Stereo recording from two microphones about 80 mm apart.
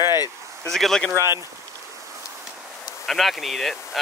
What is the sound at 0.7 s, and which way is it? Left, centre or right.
Speech, centre.